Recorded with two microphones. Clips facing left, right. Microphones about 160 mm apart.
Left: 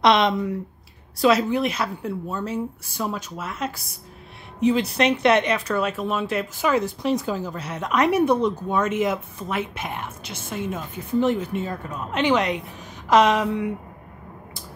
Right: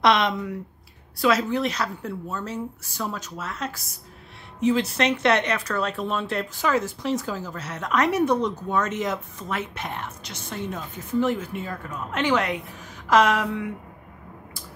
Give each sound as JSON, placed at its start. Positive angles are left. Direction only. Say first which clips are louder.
{"t": 0.0, "sound": "a woman's voice", "louder": "left 3 dB", "side_deg": 25}
{"t": 6.6, "sound": "speech", "louder": "left 2 dB", "side_deg": 15}
{"t": 11.1, "sound": "a woman's voice", "louder": "left 3 dB", "side_deg": 20}